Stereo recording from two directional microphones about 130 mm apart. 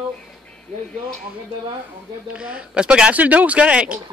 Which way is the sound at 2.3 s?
10° right (ahead or behind).